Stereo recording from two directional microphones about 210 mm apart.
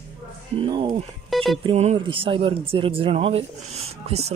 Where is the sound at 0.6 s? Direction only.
20° right (ahead or behind).